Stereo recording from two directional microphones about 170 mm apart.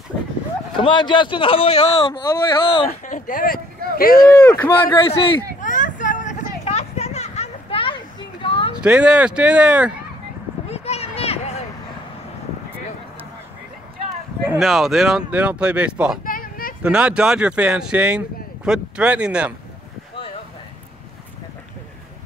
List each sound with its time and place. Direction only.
0.7 s a man's voice: 25° left (ahead or behind)
3.1 s a sound: 50° left (ahead or behind)
4.4 s speech: 15° left (ahead or behind)
4.8 s a man's voice: 30° left (ahead or behind)
5.6 s hubbub: 50° left (ahead or behind); by 8.7 s 30° left (ahead or behind)
8.7 s speech: 5° right (ahead or behind)
10.7 s a sound: 35° left (ahead or behind)
14.6 s speech: centre (ahead or behind)
16.3 s a sound: 55° left (ahead or behind)
16.8 s speech: 5° right (ahead or behind)